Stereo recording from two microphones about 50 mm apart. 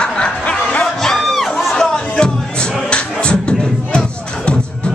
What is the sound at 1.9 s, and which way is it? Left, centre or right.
Music, centre.